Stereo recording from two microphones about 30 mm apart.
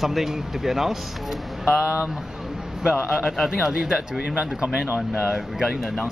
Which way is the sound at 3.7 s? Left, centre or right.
Right.